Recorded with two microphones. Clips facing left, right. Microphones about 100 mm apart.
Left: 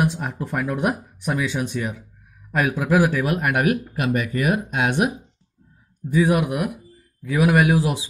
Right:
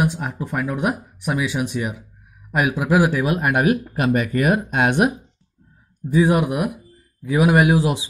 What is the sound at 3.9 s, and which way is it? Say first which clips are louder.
Speech: right 3 dB; 40° right (ahead or behind).